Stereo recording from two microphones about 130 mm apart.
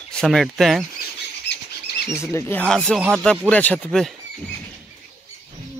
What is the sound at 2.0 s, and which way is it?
Speech, 5° right (ahead or behind).